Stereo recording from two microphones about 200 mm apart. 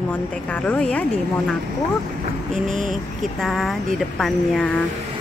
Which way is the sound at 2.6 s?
40° right (ahead or behind).